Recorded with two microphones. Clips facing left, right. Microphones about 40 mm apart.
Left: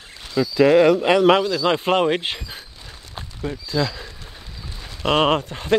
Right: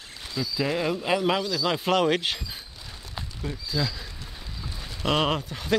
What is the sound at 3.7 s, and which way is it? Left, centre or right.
Speech, left.